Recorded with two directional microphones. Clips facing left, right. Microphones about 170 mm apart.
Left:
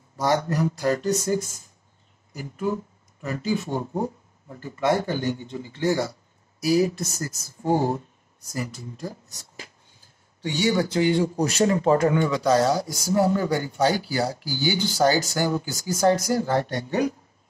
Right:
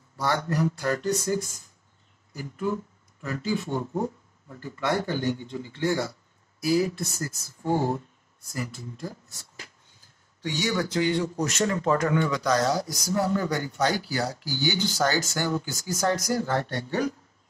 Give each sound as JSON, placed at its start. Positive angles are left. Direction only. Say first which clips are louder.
{"t": 0.2, "sound": "speech", "louder": "left 3 dB", "side_deg": 20}
{"t": 4.6, "sound": "speech", "louder": "left 4 dB", "side_deg": 20}
{"t": 7.6, "sound": "speech", "louder": "left 3 dB", "side_deg": 40}
{"t": 8.5, "sound": "speech", "louder": "left 2 dB", "side_deg": 20}
{"t": 10.4, "sound": "speech", "louder": "left 5 dB", "side_deg": 25}